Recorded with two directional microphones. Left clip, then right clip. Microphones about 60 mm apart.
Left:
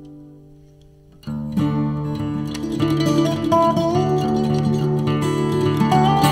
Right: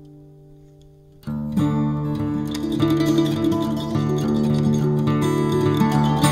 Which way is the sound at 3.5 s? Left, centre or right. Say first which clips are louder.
Left 8 dB; left.